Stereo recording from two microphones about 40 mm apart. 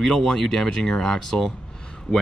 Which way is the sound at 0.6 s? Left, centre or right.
Centre.